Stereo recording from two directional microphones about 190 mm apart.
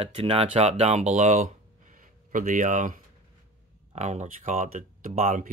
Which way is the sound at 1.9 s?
45° right (ahead or behind).